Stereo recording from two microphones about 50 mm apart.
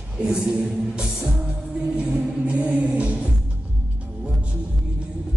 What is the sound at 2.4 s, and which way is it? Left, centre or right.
Music, right.